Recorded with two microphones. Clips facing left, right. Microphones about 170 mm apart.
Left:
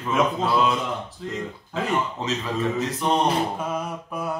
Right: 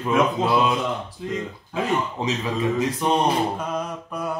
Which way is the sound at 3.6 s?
5° left (ahead or behind).